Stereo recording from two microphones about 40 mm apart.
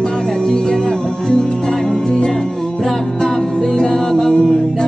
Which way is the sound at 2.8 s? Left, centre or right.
Centre.